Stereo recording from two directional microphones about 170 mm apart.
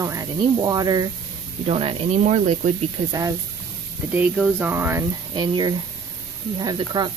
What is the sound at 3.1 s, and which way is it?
Speech, 20° right (ahead or behind).